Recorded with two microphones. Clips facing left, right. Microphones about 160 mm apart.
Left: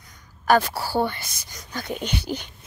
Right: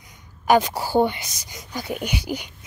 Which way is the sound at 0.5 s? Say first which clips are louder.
Right 2 dB; 15° right (ahead or behind).